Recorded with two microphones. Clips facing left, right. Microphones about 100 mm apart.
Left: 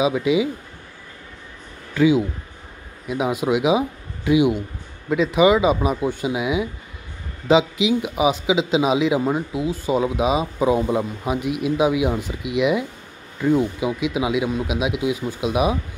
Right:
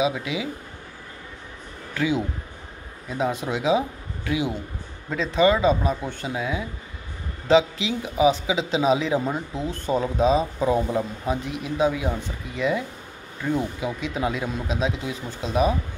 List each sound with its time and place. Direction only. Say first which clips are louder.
0.0 s speech: left 6 dB; 20° left (ahead or behind)
2.0 s speech: left 7 dB; 15° left (ahead or behind)
12.3 s speech: left 6 dB; 90° left
12.5 s speech: left 5 dB; 15° left (ahead or behind)